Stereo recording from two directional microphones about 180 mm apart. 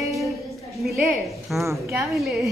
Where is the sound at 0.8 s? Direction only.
Centre (ahead or behind).